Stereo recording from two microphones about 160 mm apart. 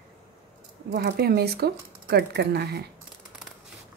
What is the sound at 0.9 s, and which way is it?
A woman's voice, 85° right.